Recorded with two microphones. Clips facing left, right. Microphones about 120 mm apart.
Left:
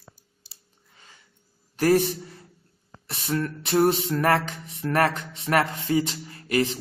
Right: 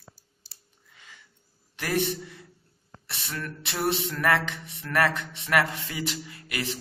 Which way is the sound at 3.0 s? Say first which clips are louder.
Left 9 dB; 40° left (ahead or behind).